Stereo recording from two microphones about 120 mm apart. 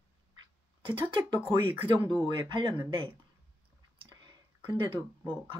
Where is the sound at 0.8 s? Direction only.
45° right (ahead or behind).